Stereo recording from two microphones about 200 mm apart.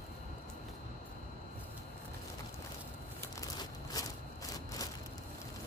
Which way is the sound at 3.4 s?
20° left (ahead or behind).